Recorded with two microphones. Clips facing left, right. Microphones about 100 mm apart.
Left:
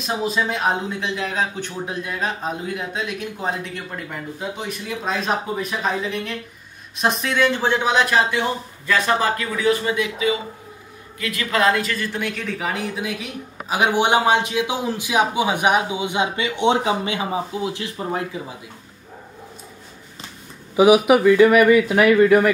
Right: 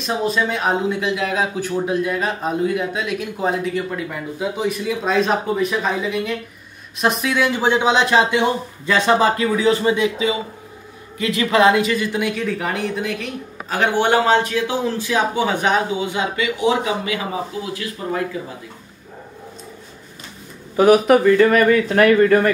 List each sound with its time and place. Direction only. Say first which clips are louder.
0.0 s a man's voice: right 2 dB; 5° left (ahead or behind); by 18.2 s 25° left (ahead or behind)
20.7 s speech: right 1 dB; 10° left (ahead or behind)